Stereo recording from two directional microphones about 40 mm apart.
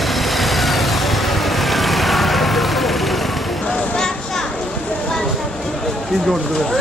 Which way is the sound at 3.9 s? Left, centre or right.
Centre.